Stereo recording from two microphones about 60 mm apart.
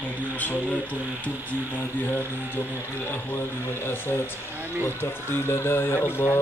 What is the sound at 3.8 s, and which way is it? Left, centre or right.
Speech, left.